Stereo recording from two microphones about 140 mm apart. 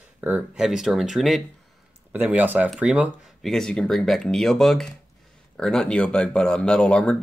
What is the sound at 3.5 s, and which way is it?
Speech, 5° left (ahead or behind).